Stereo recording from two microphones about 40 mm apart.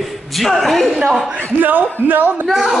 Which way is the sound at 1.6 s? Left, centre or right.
Right.